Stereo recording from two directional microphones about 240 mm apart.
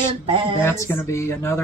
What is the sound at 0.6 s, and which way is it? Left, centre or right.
Speech, centre.